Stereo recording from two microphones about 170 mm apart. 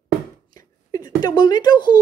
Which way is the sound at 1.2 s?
25° left (ahead or behind).